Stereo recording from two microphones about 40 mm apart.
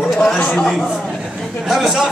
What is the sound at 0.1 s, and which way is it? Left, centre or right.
Chatter, centre.